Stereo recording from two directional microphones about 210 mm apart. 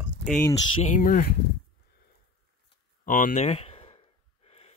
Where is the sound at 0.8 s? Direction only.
40° left (ahead or behind).